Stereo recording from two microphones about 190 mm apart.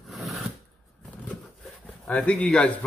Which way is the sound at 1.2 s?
5° left (ahead or behind).